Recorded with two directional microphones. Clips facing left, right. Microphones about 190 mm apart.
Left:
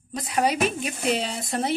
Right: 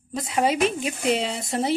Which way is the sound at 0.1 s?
25° right (ahead or behind).